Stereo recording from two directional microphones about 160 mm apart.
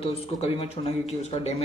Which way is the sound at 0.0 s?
35° left (ahead or behind).